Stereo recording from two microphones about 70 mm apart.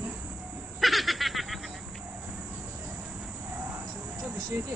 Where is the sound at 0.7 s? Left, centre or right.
Centre.